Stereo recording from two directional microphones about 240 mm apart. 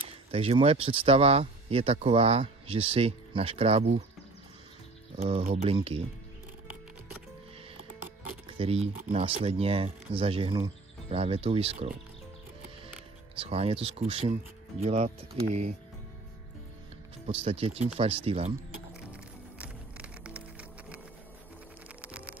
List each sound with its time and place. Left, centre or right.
0.3 s speech: right
5.1 s speech: right
8.5 s speech: right
13.4 s speech: right
17.3 s speech: right
19.6 s music: centre
22.0 s music: centre